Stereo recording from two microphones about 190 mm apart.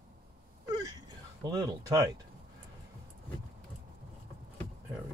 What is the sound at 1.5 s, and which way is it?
Speech, 20° right (ahead or behind).